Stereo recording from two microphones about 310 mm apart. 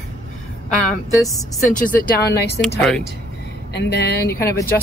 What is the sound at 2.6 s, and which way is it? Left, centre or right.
Speech, centre.